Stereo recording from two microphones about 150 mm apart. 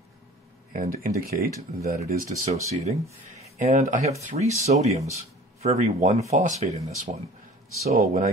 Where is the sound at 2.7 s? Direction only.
50° right (ahead or behind).